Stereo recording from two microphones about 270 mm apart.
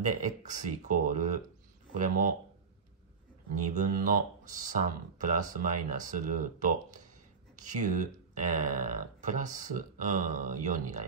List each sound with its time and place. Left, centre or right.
0.0 s speech: right
3.7 s speech: right
5.2 s speech: right